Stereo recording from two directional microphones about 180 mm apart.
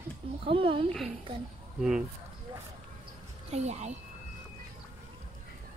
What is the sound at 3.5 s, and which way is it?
Speech, 35° right (ahead or behind).